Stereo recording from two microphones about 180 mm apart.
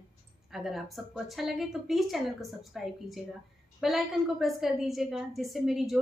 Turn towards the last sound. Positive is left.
turn(degrees=0)  # may be behind; listen again after turning